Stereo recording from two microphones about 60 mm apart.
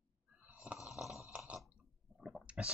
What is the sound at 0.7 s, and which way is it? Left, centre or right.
Snoring, centre.